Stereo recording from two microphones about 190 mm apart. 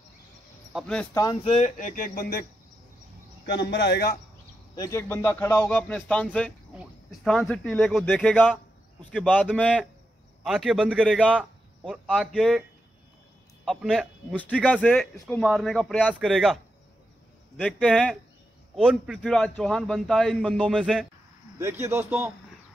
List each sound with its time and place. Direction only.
0.7 s a man's voice: 5° left (ahead or behind)
1.1 s speech: 20° left (ahead or behind)
1.5 s speech: 40° left (ahead or behind)
3.4 s a man's voice: 65° left (ahead or behind)
4.7 s a man's voice: 15° left (ahead or behind); by 11.2 s 5° right (ahead or behind)
11.2 s speech: 5° left (ahead or behind)
13.7 s a man's voice: centre (ahead or behind)
15.4 s a man's voice: centre (ahead or behind)
17.6 s a man's voice: 5° left (ahead or behind)
21.5 s speech: 15° right (ahead or behind)